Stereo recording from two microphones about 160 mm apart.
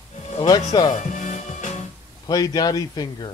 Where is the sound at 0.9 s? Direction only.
50° left (ahead or behind).